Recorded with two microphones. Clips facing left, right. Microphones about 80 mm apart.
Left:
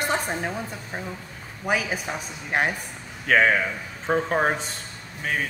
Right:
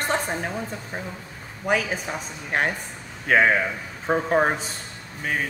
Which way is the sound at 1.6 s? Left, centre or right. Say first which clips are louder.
Right 1 dB; centre.